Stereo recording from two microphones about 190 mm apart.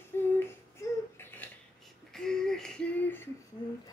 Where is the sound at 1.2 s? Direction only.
10° left (ahead or behind).